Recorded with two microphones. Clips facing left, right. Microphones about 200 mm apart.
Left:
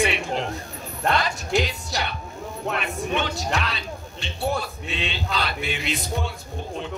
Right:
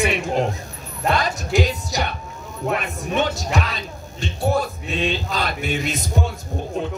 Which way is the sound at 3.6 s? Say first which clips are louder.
Right 3 dB; 45° right (ahead or behind).